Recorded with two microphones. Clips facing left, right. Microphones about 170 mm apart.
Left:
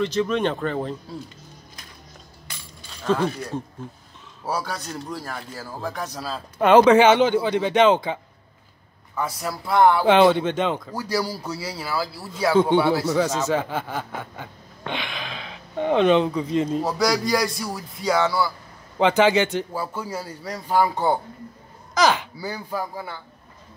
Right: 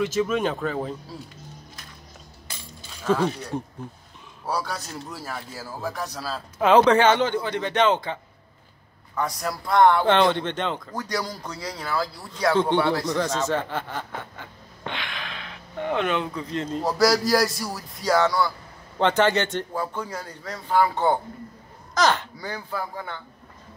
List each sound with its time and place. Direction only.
0.0 s speech: 5° right (ahead or behind)
3.1 s speech: 5° right (ahead or behind)
4.5 s speech: centre (ahead or behind)
16.8 s speech: centre (ahead or behind)